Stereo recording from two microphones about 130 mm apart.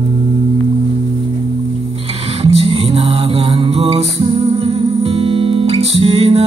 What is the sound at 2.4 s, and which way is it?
Music, 50° right (ahead or behind).